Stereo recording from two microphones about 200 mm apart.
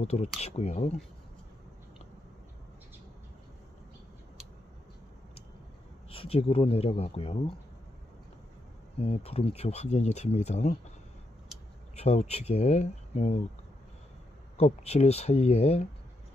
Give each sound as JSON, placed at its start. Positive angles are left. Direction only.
{"t": 0.0, "sound": "speech", "side_deg": 30}
{"t": 6.0, "sound": "speech", "side_deg": 30}
{"t": 9.0, "sound": "speech", "side_deg": 30}
{"t": 11.9, "sound": "speech", "side_deg": 35}
{"t": 14.6, "sound": "speech", "side_deg": 30}